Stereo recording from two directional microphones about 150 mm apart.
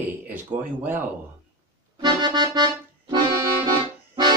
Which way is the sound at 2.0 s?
30° right (ahead or behind).